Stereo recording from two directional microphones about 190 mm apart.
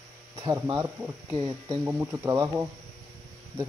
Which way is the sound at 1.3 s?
25° right (ahead or behind).